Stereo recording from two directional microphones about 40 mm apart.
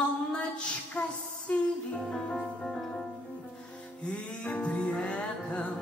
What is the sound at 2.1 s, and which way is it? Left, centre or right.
Music, left.